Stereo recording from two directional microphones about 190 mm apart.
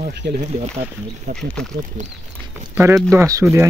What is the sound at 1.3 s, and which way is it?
Speech, 60° right (ahead or behind).